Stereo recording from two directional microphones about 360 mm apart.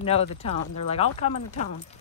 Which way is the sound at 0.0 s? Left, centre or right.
Centre.